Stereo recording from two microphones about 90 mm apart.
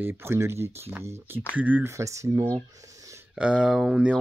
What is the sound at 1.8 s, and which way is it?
Speech, 35° right (ahead or behind).